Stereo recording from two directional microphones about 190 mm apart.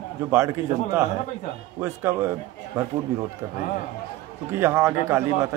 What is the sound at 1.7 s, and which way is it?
Speech, 15° right (ahead or behind).